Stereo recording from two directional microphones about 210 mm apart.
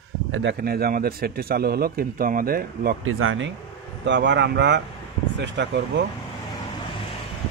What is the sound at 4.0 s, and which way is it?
Speech, 55° right (ahead or behind).